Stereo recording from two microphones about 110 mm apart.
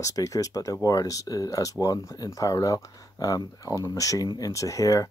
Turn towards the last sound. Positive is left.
turn(degrees=30)  # may be behind; listen again after turning